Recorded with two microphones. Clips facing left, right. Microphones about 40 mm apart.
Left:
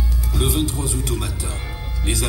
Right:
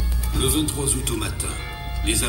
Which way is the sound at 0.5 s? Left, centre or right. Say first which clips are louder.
Right 1 dB; right.